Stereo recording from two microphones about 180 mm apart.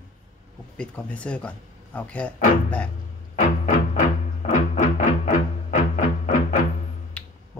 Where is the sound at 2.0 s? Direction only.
10° left (ahead or behind).